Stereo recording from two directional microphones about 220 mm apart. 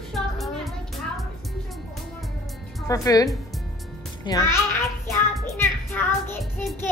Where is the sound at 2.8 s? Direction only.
15° left (ahead or behind).